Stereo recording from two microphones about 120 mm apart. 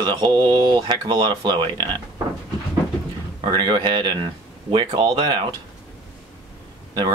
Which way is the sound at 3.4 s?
35° right (ahead or behind).